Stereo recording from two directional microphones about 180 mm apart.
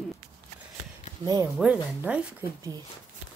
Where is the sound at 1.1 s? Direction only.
45° left (ahead or behind).